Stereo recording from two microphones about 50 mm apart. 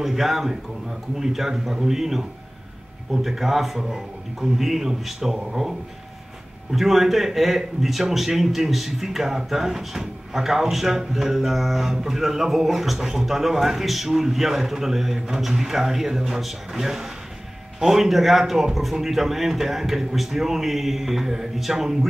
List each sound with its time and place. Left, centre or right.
0.0 s a man's voice: centre